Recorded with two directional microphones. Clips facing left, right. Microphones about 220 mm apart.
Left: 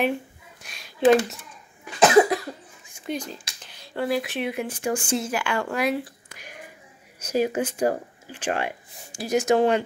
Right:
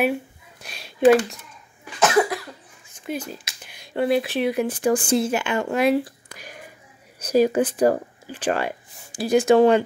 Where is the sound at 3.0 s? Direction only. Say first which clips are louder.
Right 1 dB; 5° right (ahead or behind).